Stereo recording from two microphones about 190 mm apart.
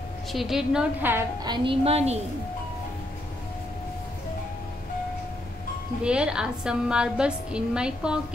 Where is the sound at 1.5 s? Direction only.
30° right (ahead or behind).